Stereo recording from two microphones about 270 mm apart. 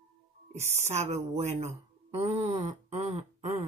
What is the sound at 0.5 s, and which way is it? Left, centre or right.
Speech, right.